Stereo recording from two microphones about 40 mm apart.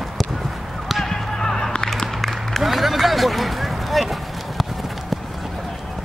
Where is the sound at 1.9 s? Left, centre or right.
Centre.